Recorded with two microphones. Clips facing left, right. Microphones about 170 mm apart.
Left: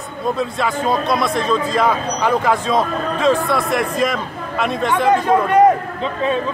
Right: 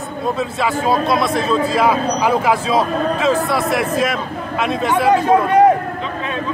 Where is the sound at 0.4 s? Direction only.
5° right (ahead or behind).